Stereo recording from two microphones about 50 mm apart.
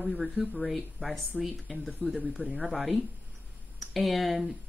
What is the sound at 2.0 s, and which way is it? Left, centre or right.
Speech, left.